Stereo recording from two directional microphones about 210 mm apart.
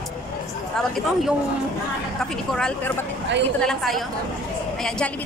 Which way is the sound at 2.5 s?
5° left (ahead or behind).